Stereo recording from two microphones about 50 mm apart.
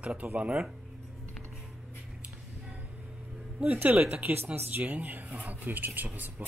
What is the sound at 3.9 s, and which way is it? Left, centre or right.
Speech, right.